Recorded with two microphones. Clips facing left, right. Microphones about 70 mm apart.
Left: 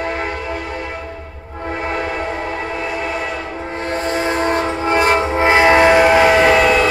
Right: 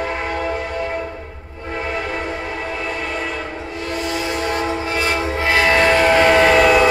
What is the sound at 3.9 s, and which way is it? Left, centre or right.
Train, left.